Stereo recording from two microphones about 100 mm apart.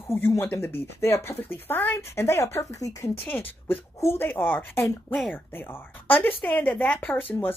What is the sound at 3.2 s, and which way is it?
Speech, 20° left (ahead or behind).